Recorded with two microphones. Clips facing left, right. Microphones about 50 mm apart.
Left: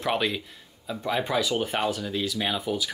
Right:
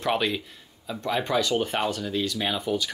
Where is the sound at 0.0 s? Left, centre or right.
Centre.